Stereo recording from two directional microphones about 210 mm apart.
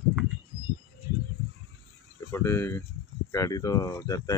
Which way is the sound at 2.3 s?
10° left (ahead or behind).